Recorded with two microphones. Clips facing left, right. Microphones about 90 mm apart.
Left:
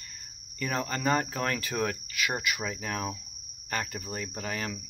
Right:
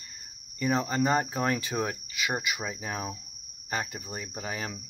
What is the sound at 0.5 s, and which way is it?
Cricket, 15° right (ahead or behind).